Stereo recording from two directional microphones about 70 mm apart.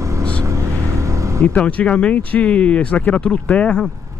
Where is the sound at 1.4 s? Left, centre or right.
Left.